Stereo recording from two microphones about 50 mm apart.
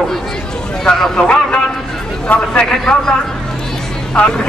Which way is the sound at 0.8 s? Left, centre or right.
Centre.